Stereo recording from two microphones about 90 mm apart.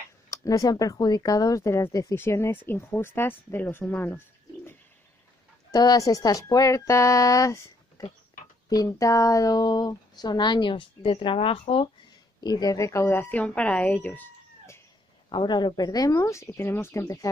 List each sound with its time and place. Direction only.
0.3 s speech: 40° left (ahead or behind); by 4.2 s 20° left (ahead or behind)
5.7 s speech: 45° left (ahead or behind)
8.6 s speech: 40° left (ahead or behind); by 11.9 s 80° left
12.4 s speech: 50° left (ahead or behind); by 13.2 s 35° left (ahead or behind)
13.2 s speech: 15° left (ahead or behind)
15.2 s speech: 60° left (ahead or behind); by 17.0 s 30° left (ahead or behind)